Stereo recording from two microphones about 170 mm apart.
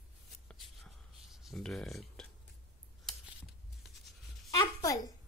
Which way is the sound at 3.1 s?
Centre (ahead or behind).